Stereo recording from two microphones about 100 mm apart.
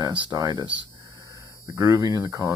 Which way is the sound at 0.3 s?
45° right (ahead or behind).